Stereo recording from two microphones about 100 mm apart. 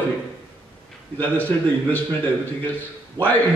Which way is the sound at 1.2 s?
15° left (ahead or behind).